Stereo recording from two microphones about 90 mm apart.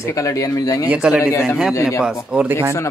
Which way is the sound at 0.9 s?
15° right (ahead or behind).